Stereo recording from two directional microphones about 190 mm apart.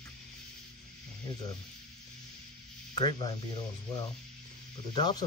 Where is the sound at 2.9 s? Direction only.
25° left (ahead or behind).